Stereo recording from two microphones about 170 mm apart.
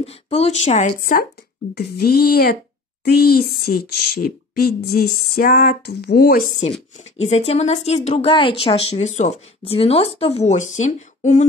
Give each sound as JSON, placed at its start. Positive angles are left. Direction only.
{"t": 0.0, "sound": "speech", "side_deg": 35}
{"t": 1.8, "sound": "speech", "side_deg": 65}
{"t": 7.2, "sound": "speech", "side_deg": 40}